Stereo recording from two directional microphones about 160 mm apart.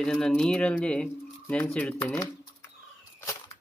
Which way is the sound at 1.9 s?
15° left (ahead or behind).